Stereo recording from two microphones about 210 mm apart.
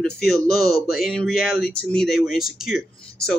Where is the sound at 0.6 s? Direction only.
45° left (ahead or behind).